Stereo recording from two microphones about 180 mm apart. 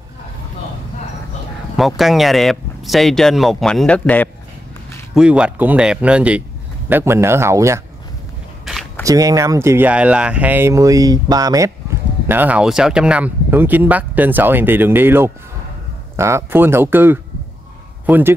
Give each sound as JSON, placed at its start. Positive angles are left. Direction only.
{"t": 1.8, "sound": "speech", "side_deg": 0}
{"t": 5.1, "sound": "speech", "side_deg": -5}
{"t": 9.0, "sound": "speech", "side_deg": -20}